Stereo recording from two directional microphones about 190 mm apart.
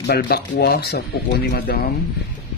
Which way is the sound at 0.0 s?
55° left (ahead or behind).